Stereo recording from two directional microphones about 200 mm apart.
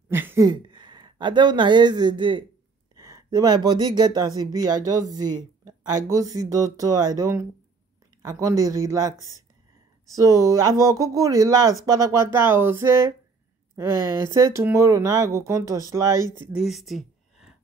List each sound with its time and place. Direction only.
0.1 s speech: 10° right (ahead or behind)
10.1 s speech: 15° right (ahead or behind)
16.3 s speech: 5° right (ahead or behind)